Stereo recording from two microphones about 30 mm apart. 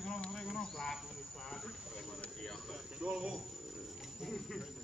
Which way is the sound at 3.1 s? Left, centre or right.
Right.